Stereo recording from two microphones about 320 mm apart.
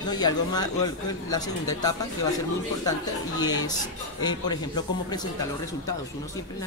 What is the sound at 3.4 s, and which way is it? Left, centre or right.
Speech, centre.